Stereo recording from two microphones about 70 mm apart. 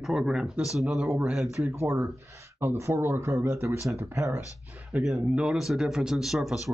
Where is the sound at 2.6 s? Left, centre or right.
Right.